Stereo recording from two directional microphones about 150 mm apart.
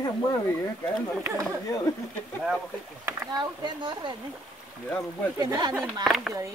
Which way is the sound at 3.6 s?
30° right (ahead or behind).